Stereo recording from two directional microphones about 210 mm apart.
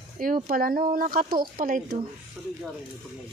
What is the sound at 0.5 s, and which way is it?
Speech, 45° right (ahead or behind).